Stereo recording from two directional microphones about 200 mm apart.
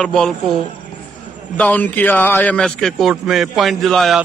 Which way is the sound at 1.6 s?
10° left (ahead or behind).